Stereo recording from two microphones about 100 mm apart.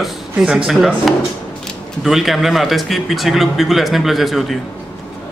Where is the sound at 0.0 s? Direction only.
5° right (ahead or behind).